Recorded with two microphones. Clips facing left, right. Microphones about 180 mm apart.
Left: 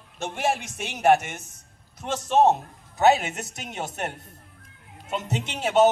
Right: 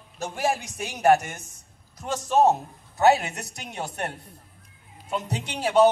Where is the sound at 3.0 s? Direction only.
20° left (ahead or behind).